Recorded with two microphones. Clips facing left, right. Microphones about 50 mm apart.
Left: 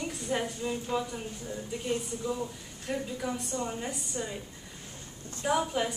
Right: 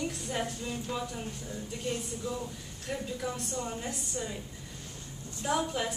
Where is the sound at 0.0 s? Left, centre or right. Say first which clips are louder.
Left 2 dB; centre.